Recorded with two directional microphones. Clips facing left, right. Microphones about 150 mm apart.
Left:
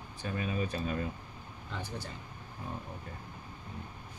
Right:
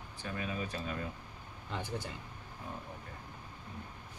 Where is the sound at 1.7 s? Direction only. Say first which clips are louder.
Right 2 dB; 20° right (ahead or behind).